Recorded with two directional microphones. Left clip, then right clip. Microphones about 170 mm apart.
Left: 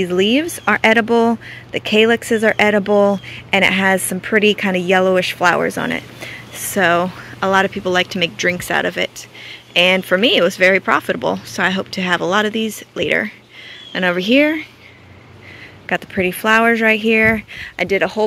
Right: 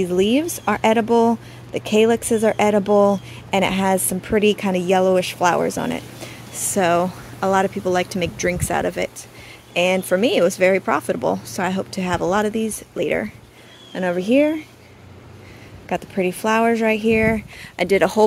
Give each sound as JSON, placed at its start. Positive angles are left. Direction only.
{"t": 0.0, "sound": "a woman's voice", "side_deg": -10}
{"t": 15.9, "sound": "a woman's voice", "side_deg": -10}
{"t": 17.7, "sound": "speech", "side_deg": -25}